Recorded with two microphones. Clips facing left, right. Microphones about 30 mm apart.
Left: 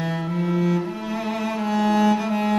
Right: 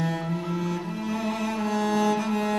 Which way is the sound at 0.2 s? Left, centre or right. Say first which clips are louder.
Left 6 dB; centre.